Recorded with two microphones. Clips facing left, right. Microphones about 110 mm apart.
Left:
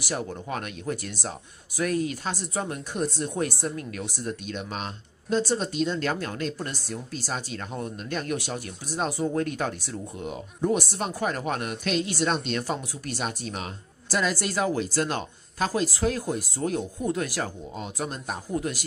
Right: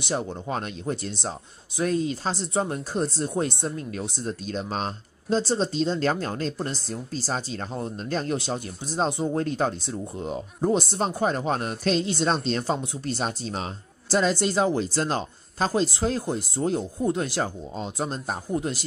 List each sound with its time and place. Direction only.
0.0 s speech: 25° right (ahead or behind)